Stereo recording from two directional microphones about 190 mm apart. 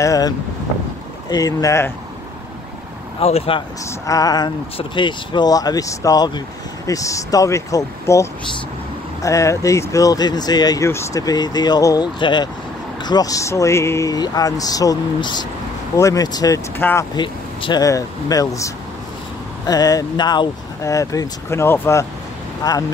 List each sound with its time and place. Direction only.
0.0 s speech: 15° left (ahead or behind)
1.3 s speech: 20° left (ahead or behind)
3.2 s speech: 30° left (ahead or behind)
3.8 s speech: 20° left (ahead or behind)
17.2 s speech: 25° left (ahead or behind)